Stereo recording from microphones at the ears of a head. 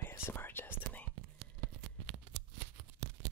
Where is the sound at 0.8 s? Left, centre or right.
Right.